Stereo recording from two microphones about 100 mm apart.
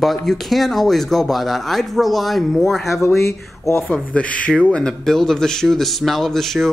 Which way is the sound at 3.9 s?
15° left (ahead or behind).